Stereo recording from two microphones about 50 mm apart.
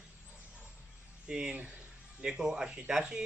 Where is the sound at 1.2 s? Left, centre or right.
Centre.